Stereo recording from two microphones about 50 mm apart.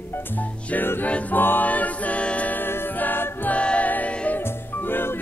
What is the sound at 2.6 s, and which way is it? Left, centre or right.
Music, left.